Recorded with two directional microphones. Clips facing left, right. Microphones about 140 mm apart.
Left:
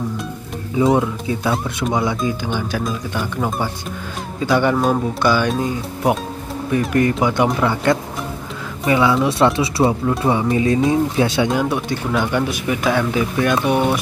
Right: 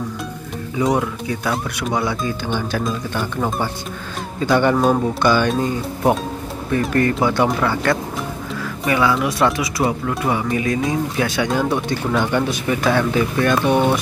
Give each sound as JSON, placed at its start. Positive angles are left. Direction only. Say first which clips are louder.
{"t": 0.9, "sound": "speech", "louder": "left 2 dB", "side_deg": 25}
{"t": 11.5, "sound": "speech", "louder": "even", "side_deg": 5}